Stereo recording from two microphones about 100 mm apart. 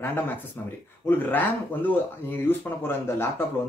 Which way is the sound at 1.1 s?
20° left (ahead or behind).